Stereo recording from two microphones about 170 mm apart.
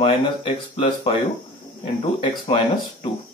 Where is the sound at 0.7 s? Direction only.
30° left (ahead or behind).